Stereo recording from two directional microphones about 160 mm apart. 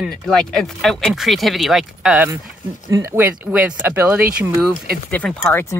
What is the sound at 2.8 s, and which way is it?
Speech, 20° right (ahead or behind).